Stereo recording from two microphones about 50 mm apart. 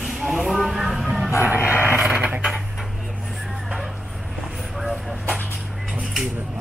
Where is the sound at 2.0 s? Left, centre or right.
Centre.